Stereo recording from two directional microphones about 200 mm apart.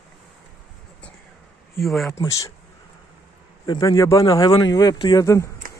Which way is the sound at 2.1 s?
15° left (ahead or behind).